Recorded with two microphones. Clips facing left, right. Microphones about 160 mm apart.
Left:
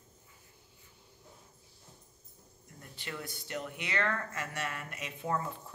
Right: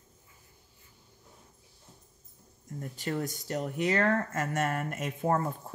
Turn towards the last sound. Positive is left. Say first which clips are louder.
# right 6 dB
turn(degrees=-50)  # may be behind; listen again after turning